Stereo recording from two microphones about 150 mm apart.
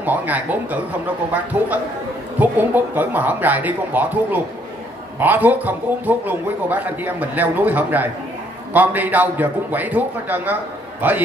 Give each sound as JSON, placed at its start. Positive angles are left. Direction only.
{"t": 0.0, "sound": "a man's voice", "side_deg": -10}